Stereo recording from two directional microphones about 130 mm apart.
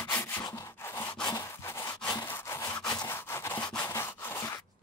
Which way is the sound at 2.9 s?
25° left (ahead or behind).